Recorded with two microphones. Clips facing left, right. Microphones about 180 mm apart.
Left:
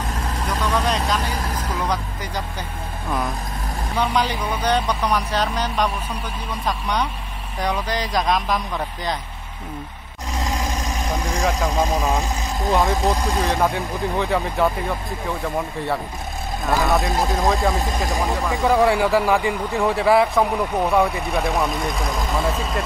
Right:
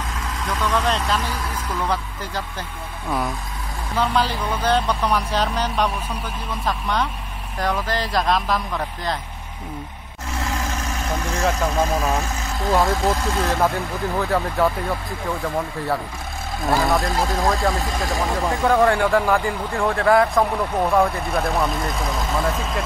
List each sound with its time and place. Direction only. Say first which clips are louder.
0.7 s speech: even; 10° left (ahead or behind)
3.9 s speech: right 1 dB; 10° left (ahead or behind)
6.6 s speech: even; centre (ahead or behind)
10.3 s vehicle: left 1 dB; 15° left (ahead or behind)
12.9 s speech: even; 15° left (ahead or behind)
13.6 s speech: even; centre (ahead or behind)
17.8 s speech: left 1 dB; 20° left (ahead or behind)
18.2 s speech: right 1 dB; centre (ahead or behind)